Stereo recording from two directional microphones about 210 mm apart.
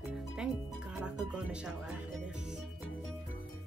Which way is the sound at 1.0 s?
5° right (ahead or behind).